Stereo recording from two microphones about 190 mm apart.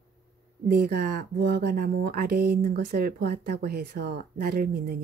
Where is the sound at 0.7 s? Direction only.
55° right (ahead or behind).